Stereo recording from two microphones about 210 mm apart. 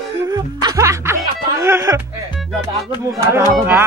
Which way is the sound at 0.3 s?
15° right (ahead or behind).